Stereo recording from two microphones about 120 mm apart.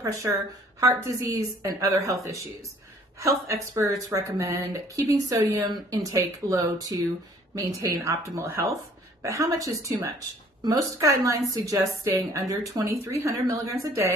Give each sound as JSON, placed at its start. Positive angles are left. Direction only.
{"t": 0.0, "sound": "speech", "side_deg": -30}
{"t": 3.4, "sound": "speech", "side_deg": -25}